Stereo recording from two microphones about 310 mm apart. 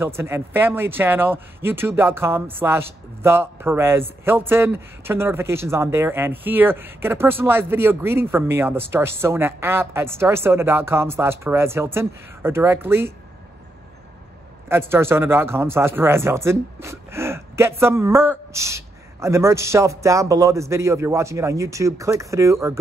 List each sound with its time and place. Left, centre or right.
0.0 s speech: centre
14.7 s speech: centre